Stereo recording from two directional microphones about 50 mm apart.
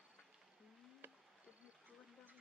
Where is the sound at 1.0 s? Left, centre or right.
Right.